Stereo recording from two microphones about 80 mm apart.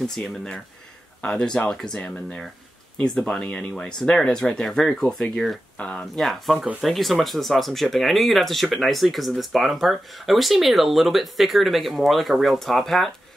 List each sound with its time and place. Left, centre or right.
0.0 s speech: centre
5.8 s speech: centre
6.1 s speech: centre